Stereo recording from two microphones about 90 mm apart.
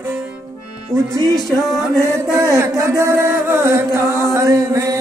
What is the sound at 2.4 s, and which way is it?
Chant, 40° right (ahead or behind).